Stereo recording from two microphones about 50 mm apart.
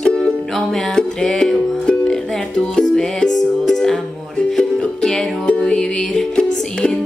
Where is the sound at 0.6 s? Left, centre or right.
Centre.